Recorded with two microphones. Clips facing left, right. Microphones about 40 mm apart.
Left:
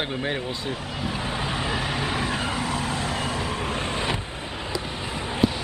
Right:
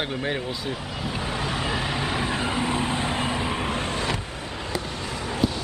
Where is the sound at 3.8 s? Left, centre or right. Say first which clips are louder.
Even; centre.